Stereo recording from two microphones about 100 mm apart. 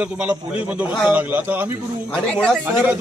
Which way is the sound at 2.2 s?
10° left (ahead or behind).